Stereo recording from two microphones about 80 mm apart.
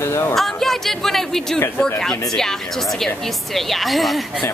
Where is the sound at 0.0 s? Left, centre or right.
Left.